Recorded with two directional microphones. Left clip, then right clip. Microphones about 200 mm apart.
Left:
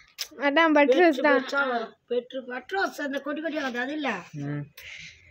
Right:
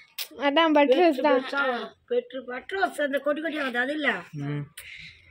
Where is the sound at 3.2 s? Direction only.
20° left (ahead or behind).